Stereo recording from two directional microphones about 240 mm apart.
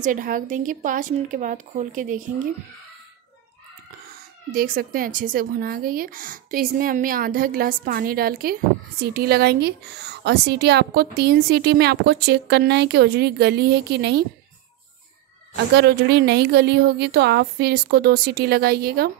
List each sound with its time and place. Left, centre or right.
0.0 s speech: right
4.5 s a woman's voice: right
15.7 s a woman's voice: right